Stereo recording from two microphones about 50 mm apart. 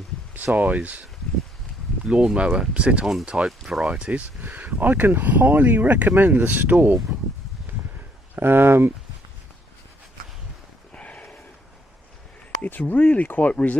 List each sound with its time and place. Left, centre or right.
0.3 s speech: right
2.0 s speech: centre
4.1 s speech: right
8.4 s speech: right
11.0 s a sound: left
12.6 s speech: left